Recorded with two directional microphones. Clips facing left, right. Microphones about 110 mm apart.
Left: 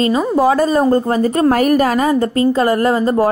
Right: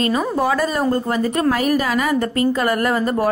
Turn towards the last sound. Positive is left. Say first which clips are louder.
# left 5 dB
turn(degrees=25)  # may be behind; listen again after turning